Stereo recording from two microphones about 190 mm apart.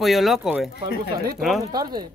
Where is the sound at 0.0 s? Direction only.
Centre (ahead or behind).